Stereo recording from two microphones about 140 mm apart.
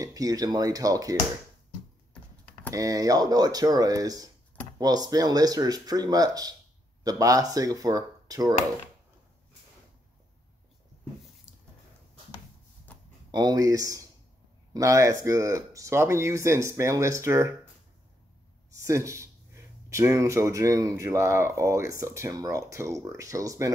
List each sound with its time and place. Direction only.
0.0 s speech: 25° right (ahead or behind)
2.7 s speech: 25° right (ahead or behind)
11.5 s a sound: 10° right (ahead or behind)
12.9 s a sound: 10° left (ahead or behind)
13.3 s speech: 30° right (ahead or behind)
18.8 s speech: 20° right (ahead or behind)